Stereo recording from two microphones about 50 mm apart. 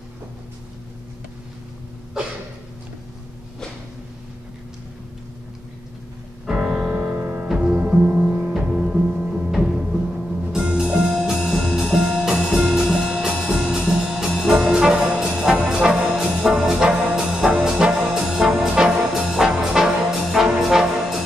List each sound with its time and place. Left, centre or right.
6.4 s music: centre
6.7 s music: right
8.5 s music: centre
14.4 s brass instrument: centre
18.1 s music: centre